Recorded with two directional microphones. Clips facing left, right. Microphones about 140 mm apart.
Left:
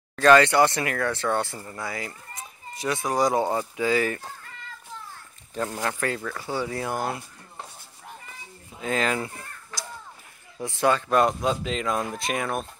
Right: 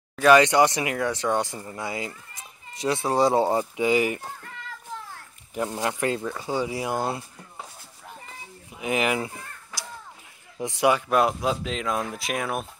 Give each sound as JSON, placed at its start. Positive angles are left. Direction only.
{"t": 0.1, "sound": "speech", "side_deg": -10}
{"t": 5.5, "sound": "speech", "side_deg": -15}
{"t": 8.7, "sound": "speech", "side_deg": -15}